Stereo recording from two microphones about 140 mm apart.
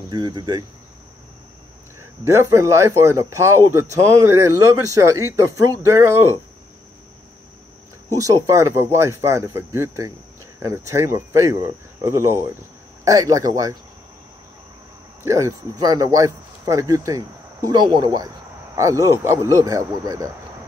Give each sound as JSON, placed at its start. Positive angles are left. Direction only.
{"t": 0.1, "sound": "speech", "side_deg": -30}
{"t": 2.0, "sound": "speech", "side_deg": -20}
{"t": 8.2, "sound": "speech", "side_deg": -25}
{"t": 15.2, "sound": "speech", "side_deg": -25}